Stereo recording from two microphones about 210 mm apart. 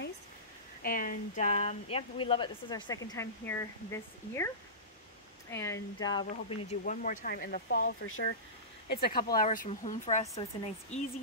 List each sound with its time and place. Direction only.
0.8 s speech: 40° left (ahead or behind); by 4.5 s 10° left (ahead or behind)
5.5 s speech: 15° left (ahead or behind)
6.8 s speech: 40° left (ahead or behind)
7.8 s speech: 75° left (ahead or behind)
8.9 s speech: 45° left (ahead or behind)